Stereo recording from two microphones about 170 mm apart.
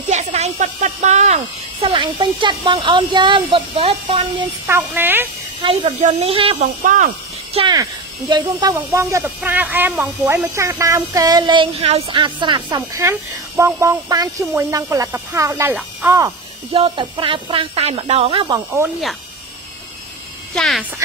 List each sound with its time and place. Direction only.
0.1 s speech: 40° right (ahead or behind)
4.6 s speech: 10° right (ahead or behind)
5.6 s speech: 30° right (ahead or behind)
6.3 s speech: 30° right (ahead or behind)
6.8 s speech: 50° right (ahead or behind)
7.5 s speech: 25° right (ahead or behind)
16.7 s speech: 30° right (ahead or behind)
20.5 s speech: 5° left (ahead or behind)